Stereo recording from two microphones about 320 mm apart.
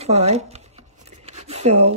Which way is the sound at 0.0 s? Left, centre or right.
Centre.